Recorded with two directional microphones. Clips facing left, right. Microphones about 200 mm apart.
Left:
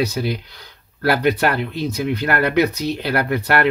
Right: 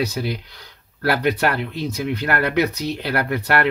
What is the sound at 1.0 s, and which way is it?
Speech, 15° left (ahead or behind).